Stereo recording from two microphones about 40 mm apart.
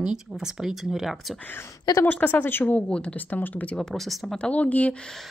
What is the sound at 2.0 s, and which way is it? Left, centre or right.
Speech, left.